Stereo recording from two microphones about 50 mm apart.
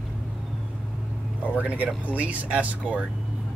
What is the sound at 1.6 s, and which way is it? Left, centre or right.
Speech, right.